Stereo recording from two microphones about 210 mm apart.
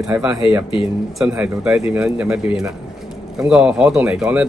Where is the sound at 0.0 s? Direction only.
5° right (ahead or behind).